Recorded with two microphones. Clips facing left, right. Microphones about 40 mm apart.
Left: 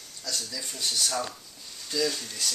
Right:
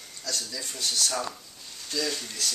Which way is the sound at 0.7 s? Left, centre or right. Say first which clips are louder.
Even; centre.